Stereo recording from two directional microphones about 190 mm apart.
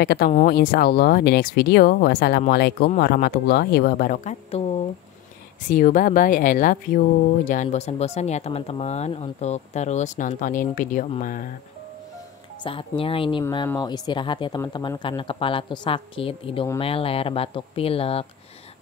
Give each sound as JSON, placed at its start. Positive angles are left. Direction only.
{"t": 0.0, "sound": "speech", "side_deg": 60}
{"t": 5.7, "sound": "speech", "side_deg": 45}
{"t": 12.6, "sound": "speech", "side_deg": 30}